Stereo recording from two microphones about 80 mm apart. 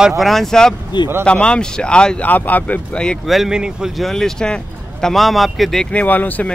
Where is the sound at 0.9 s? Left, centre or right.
Left.